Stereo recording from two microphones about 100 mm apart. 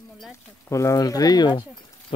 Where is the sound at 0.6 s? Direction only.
30° left (ahead or behind); by 1.7 s 50° left (ahead or behind).